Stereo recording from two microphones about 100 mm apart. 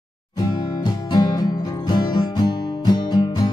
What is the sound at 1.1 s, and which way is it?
Music, 40° left (ahead or behind).